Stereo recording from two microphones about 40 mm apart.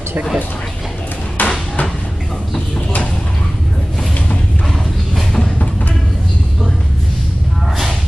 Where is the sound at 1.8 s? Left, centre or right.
Centre.